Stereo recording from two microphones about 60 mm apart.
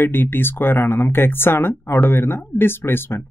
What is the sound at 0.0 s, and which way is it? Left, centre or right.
Speech, left.